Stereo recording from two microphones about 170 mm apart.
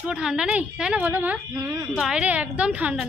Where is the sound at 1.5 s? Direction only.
20° right (ahead or behind).